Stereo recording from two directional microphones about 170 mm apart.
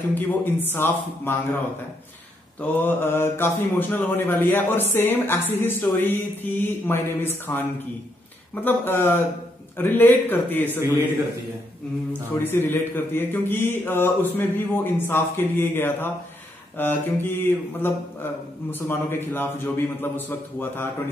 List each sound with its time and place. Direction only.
0.1 s speech: 10° left (ahead or behind)
2.6 s speech: 10° left (ahead or behind)
8.6 s speech: 15° left (ahead or behind)
12.1 s speech: 10° left (ahead or behind)